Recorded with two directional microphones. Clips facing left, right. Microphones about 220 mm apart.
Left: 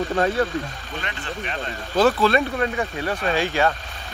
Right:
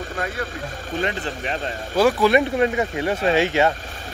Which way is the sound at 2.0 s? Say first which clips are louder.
Right 1 dB; 15° right (ahead or behind).